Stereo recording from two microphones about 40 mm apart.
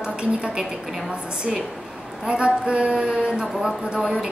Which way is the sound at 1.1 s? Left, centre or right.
Right.